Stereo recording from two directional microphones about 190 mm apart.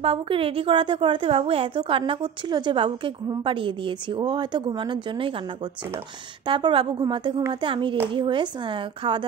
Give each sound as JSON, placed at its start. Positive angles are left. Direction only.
{"t": 0.0, "sound": "a woman's voice", "side_deg": -30}
{"t": 6.4, "sound": "a woman's voice", "side_deg": -25}